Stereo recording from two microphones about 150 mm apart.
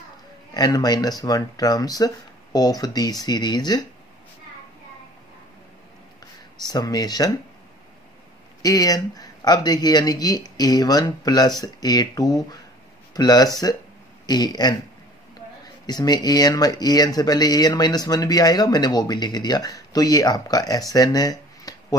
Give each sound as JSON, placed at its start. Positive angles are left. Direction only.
{"t": 0.6, "sound": "speech", "side_deg": 25}
{"t": 6.6, "sound": "speech", "side_deg": 25}
{"t": 8.6, "sound": "speech", "side_deg": 25}
{"t": 15.9, "sound": "speech", "side_deg": 25}